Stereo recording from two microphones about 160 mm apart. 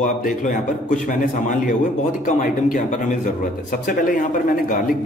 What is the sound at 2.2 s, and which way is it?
Speech, 50° left (ahead or behind).